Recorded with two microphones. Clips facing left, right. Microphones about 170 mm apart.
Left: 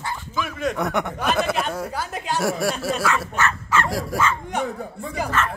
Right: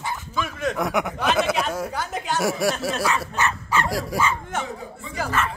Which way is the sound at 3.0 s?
20° right (ahead or behind).